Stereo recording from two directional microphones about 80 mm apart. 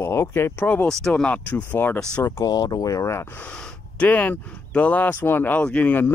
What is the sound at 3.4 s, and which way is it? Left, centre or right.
Speech, centre.